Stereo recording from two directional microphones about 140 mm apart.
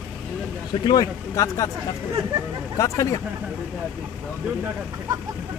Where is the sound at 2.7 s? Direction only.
25° left (ahead or behind).